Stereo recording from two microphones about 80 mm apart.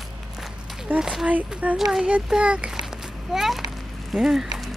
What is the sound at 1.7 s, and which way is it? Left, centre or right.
Speech, centre.